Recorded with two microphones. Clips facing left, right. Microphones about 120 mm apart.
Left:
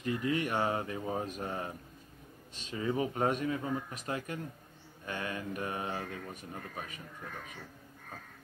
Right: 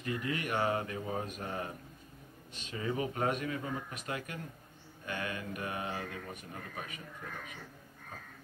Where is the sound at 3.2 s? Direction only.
35° left (ahead or behind).